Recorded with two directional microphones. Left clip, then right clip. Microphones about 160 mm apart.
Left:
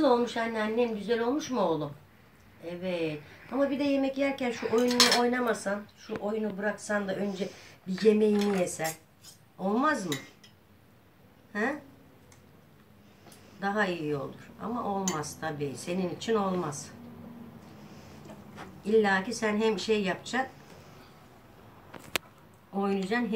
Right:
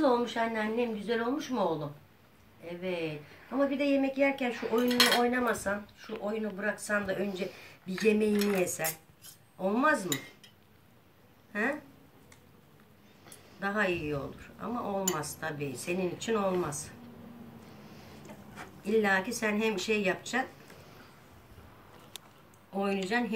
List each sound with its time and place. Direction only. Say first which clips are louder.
0.0 s speech: left 2 dB; 10° right (ahead or behind)
2.6 s speech: left 3 dB; 10° right (ahead or behind)
13.6 s speech: left 1 dB; 15° right (ahead or behind)
18.9 s speech: left 2 dB; 15° right (ahead or behind)
22.8 s speech: left 1 dB; 10° right (ahead or behind)